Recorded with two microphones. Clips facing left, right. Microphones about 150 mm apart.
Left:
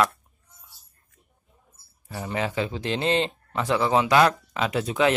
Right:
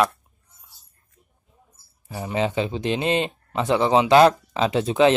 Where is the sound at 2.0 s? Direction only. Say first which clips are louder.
Right 4 dB; 15° right (ahead or behind).